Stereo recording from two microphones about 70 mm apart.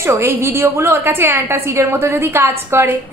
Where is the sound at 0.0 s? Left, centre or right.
Right.